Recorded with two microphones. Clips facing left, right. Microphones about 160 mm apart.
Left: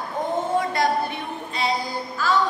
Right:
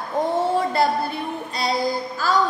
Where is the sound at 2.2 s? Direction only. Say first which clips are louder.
Left 1 dB; 40° right (ahead or behind).